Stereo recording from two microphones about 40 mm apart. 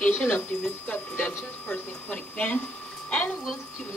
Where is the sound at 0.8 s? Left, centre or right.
Left.